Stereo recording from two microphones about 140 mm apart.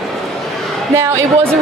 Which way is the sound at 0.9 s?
20° right (ahead or behind).